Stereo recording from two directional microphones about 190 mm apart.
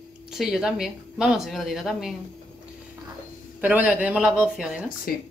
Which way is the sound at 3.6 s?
10° right (ahead or behind).